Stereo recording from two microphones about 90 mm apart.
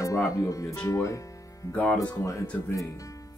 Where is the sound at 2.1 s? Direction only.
35° left (ahead or behind).